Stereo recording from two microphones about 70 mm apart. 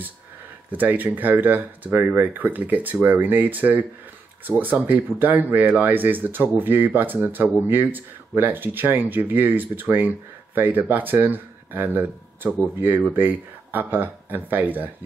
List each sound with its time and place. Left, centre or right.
0.7 s speech: right